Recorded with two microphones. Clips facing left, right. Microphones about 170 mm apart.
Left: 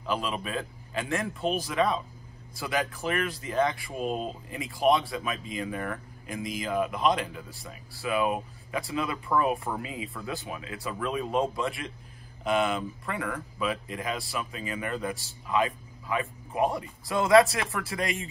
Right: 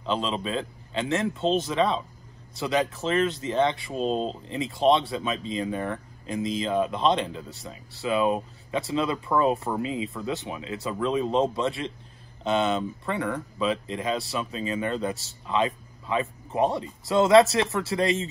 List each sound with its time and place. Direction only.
0.0 s speech: 25° right (ahead or behind)